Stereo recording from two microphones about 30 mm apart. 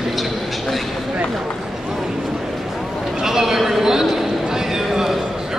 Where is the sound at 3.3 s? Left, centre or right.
Centre.